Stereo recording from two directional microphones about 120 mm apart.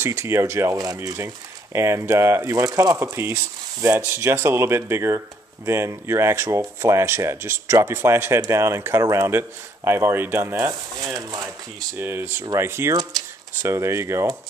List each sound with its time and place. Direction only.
0.0 s speech: 20° right (ahead or behind)